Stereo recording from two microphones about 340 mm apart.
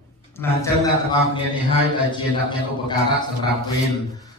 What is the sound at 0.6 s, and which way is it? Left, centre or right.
Speech, centre.